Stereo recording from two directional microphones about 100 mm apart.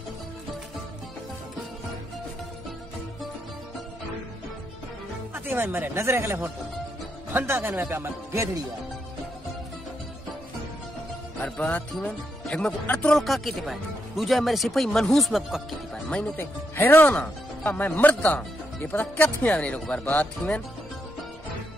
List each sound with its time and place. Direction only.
5.3 s speech: 20° right (ahead or behind)
11.3 s speech: 10° left (ahead or behind)
13.1 s speech: centre (ahead or behind)
15.9 s speech: 10° left (ahead or behind)